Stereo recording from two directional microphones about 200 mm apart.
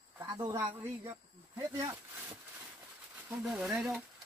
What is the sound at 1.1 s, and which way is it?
Snake, 15° right (ahead or behind).